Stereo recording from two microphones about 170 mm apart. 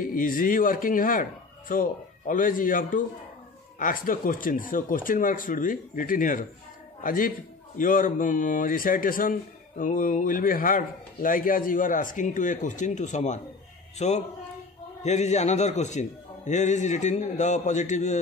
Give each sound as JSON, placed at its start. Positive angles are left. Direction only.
{"t": 0.0, "sound": "a man's voice", "side_deg": 55}